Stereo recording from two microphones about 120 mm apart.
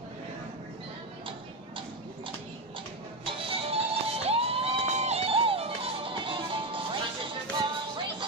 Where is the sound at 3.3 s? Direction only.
55° right (ahead or behind).